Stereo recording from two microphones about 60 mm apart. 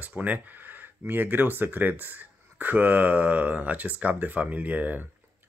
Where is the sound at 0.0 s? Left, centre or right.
Right.